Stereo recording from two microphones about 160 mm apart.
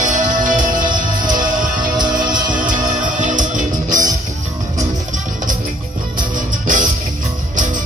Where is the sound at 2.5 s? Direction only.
55° right (ahead or behind).